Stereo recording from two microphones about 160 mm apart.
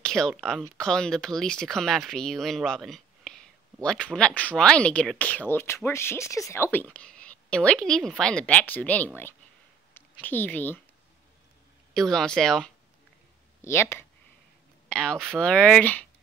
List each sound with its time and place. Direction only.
0.0 s speech: 5° left (ahead or behind)
11.9 s speech: 5° left (ahead or behind)
13.6 s speech: 15° left (ahead or behind)
14.9 s speech: 5° left (ahead or behind)
15.1 s speech: 5° right (ahead or behind)
15.4 s speech: 5° left (ahead or behind)